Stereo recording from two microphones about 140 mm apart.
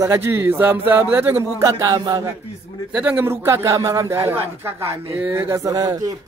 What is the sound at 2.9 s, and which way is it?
A man's voice, 10° right (ahead or behind).